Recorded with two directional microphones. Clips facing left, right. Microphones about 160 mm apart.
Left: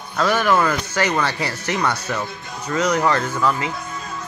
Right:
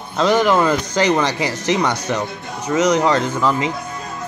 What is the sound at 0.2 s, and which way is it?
Speech, 20° right (ahead or behind).